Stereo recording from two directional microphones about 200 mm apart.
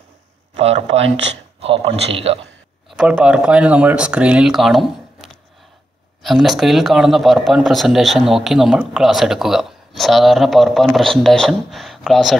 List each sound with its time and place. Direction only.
0.6 s speech: 30° right (ahead or behind)
2.9 s speech: 5° right (ahead or behind)